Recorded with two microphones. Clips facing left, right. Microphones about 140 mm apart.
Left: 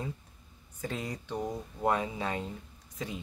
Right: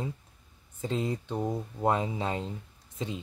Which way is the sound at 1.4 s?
5° right (ahead or behind).